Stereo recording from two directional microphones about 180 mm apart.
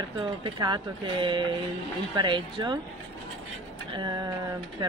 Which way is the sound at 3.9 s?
25° right (ahead or behind).